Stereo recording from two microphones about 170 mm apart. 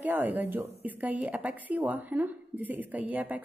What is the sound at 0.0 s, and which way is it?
A woman's voice, 10° right (ahead or behind).